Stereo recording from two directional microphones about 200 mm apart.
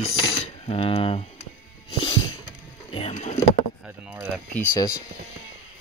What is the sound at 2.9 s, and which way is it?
Speech, 30° left (ahead or behind).